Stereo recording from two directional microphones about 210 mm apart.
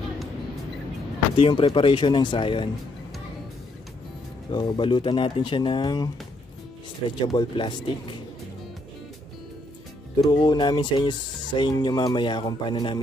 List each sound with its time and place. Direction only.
1.3 s speech: 25° left (ahead or behind)
4.5 s speech: 20° left (ahead or behind)
10.3 s speech: 20° left (ahead or behind)